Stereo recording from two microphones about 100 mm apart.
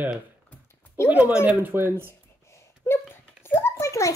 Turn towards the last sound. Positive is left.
turn(degrees=30)  # may be behind; listen again after turning